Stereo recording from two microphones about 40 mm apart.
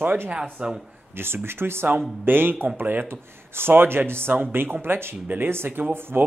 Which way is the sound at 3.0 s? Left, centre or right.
Right.